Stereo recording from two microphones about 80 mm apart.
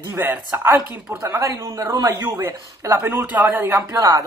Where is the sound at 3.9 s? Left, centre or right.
Right.